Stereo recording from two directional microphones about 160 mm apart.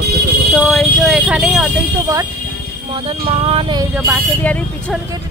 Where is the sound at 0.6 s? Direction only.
Centre (ahead or behind).